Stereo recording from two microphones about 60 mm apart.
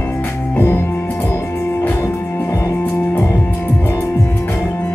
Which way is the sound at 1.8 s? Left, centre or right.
Left.